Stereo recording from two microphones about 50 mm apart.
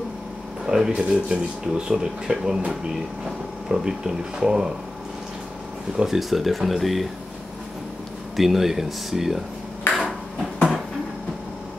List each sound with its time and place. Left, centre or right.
0.7 s speech: centre
0.9 s speech: centre
5.9 s speech: centre
8.4 s speech: centre
9.9 s a sound: left